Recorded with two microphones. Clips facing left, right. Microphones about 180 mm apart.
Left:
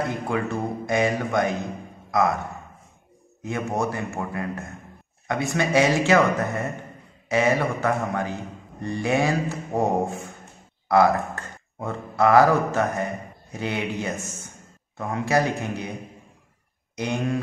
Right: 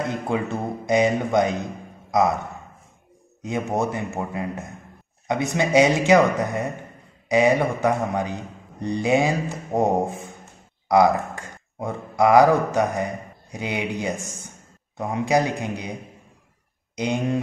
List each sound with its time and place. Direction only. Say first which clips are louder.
0.1 s a man's voice: right 1 dB; 20° right (ahead or behind)
2.0 s a sound: right 2 dB; 20° right (ahead or behind)
3.4 s a man's voice: right 2 dB; 20° right (ahead or behind)
16.9 s mantra: right 2 dB; 15° right (ahead or behind)